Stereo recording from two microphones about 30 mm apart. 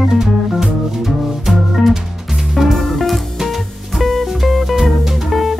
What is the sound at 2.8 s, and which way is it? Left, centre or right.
Music, centre.